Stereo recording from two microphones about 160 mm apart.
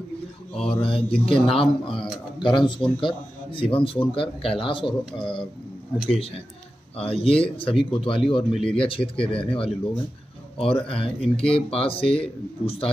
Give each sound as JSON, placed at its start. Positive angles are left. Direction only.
{"t": 0.6, "sound": "a man's voice", "side_deg": 35}
{"t": 2.0, "sound": "speech", "side_deg": -5}
{"t": 2.4, "sound": "a man's voice", "side_deg": 30}